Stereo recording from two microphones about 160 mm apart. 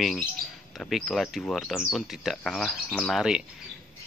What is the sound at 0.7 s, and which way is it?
Speech, centre (ahead or behind).